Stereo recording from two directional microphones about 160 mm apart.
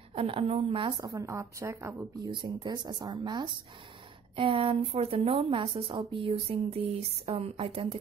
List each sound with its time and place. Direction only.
0.1 s a woman's voice: 35° right (ahead or behind); by 2.3 s 15° right (ahead or behind)
2.3 s a woman's voice: 30° right (ahead or behind)